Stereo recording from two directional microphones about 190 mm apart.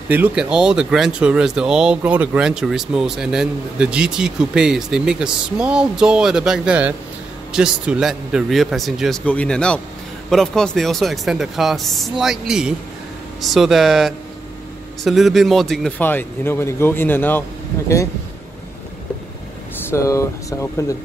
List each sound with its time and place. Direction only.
0.1 s speech: 5° right (ahead or behind); by 18.0 s 15° left (ahead or behind)
19.9 s speech: 15° left (ahead or behind)